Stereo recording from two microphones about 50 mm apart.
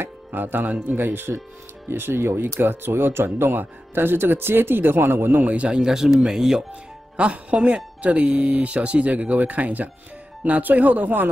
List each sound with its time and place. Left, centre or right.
0.0 s speech: right
5.4 s speech: right
5.8 s speech: centre; by 11.2 s right